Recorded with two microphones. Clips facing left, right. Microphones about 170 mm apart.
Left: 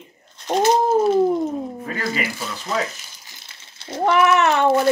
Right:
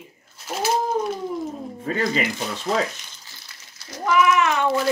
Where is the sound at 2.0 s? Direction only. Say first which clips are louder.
Right 2 dB; 25° right (ahead or behind).